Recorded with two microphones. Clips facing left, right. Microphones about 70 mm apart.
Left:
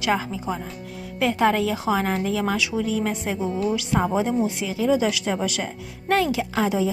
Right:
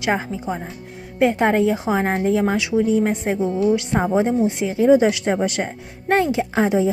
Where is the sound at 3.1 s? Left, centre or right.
Right.